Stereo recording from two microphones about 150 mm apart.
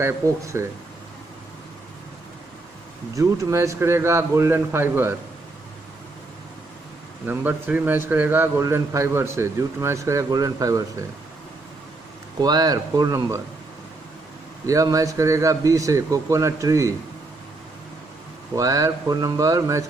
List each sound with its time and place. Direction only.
0.0 s a man's voice: 20° right (ahead or behind)
3.2 s a man's voice: 20° right (ahead or behind)
7.2 s a man's voice: 10° right (ahead or behind)
12.4 s a man's voice: 25° right (ahead or behind)
14.7 s a man's voice: 20° right (ahead or behind)
18.5 s a man's voice: 20° right (ahead or behind)